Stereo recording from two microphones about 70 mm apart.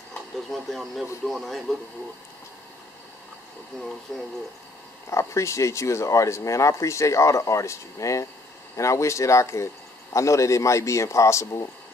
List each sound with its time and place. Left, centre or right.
0.5 s speech: centre
4.1 s speech: centre
5.1 s speech: left